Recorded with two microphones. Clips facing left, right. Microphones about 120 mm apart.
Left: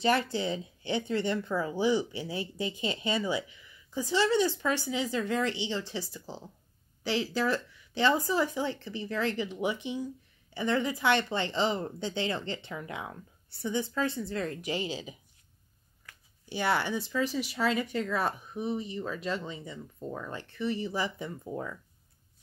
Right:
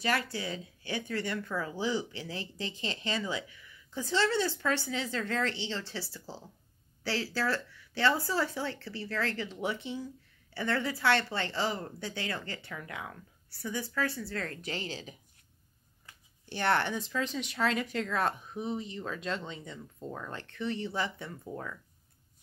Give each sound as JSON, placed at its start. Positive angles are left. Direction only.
{"t": 0.0, "sound": "a woman's voice", "side_deg": 25}
{"t": 16.4, "sound": "speech", "side_deg": 10}